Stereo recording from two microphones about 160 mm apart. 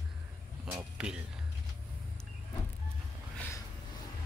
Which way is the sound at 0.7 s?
5° right (ahead or behind).